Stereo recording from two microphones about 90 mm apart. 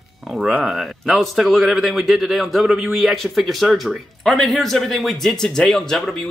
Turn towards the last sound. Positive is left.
turn(degrees=5)  # may be behind; listen again after turning